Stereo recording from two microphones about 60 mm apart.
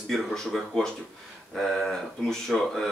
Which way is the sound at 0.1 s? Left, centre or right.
Centre.